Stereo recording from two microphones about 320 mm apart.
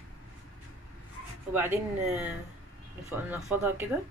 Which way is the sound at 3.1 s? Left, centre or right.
Centre.